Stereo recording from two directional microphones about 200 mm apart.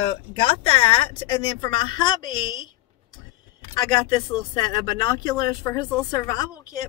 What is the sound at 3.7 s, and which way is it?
Speech, 20° left (ahead or behind).